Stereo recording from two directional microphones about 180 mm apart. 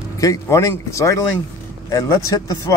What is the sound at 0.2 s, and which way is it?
A man's voice, 15° left (ahead or behind).